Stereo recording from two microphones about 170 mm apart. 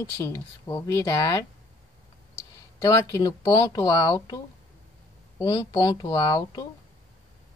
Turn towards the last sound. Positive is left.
turn(degrees=20)  # may be behind; listen again after turning